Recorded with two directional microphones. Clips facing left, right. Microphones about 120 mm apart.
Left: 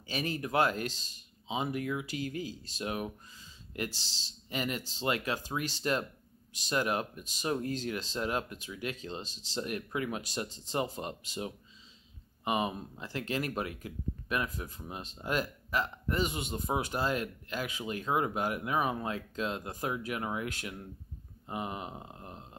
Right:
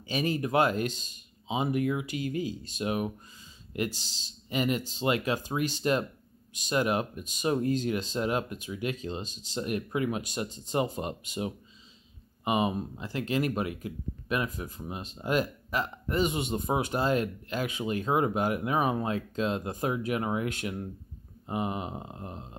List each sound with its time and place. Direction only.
0.0 s speech: 15° right (ahead or behind)